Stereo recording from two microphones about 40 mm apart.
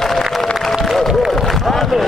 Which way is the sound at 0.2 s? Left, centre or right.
Centre.